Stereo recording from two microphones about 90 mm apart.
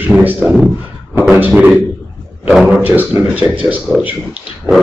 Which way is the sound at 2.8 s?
20° right (ahead or behind).